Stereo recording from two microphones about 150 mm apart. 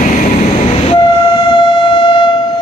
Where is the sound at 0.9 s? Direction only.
35° left (ahead or behind).